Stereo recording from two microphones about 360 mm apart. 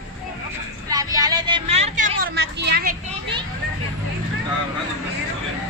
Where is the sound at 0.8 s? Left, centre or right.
Centre.